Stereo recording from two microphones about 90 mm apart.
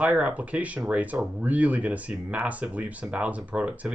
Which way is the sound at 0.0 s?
15° right (ahead or behind).